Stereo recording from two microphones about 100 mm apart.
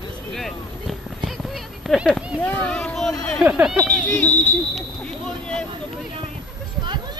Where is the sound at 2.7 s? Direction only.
10° left (ahead or behind).